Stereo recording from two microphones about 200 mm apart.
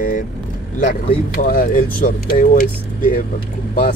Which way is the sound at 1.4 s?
40° left (ahead or behind).